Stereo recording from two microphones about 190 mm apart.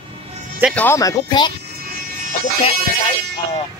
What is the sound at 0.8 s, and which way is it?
Speech, 15° left (ahead or behind).